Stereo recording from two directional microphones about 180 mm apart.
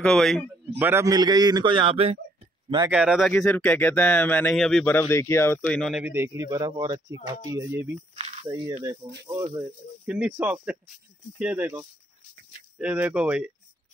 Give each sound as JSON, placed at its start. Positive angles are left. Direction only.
{"t": 0.0, "sound": "a man's voice", "side_deg": 5}
{"t": 0.7, "sound": "a man's voice", "side_deg": -10}
{"t": 2.9, "sound": "speech", "side_deg": -5}
{"t": 5.8, "sound": "speech", "side_deg": 0}
{"t": 8.1, "sound": "a sound", "side_deg": -35}
{"t": 9.2, "sound": "a man's voice", "side_deg": -20}
{"t": 10.0, "sound": "speech", "side_deg": -5}